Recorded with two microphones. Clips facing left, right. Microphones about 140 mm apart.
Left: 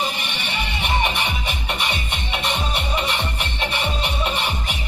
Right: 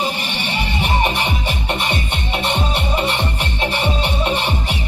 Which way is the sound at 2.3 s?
30° right (ahead or behind).